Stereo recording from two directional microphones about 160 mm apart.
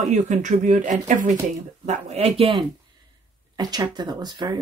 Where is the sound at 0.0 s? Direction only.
50° right (ahead or behind).